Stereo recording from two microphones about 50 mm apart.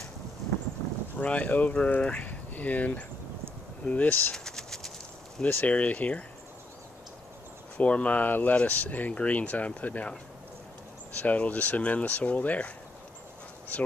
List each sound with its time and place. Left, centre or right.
1.1 s speech: left
4.3 s a sound: centre
5.7 s speech: left
7.7 s speech: left
11.1 s speech: left